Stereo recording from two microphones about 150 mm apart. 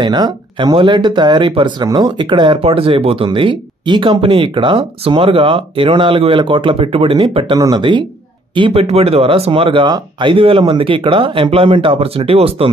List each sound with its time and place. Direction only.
0.0 s speech: 30° right (ahead or behind)